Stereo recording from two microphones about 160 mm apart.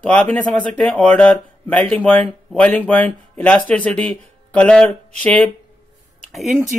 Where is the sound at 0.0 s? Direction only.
5° left (ahead or behind).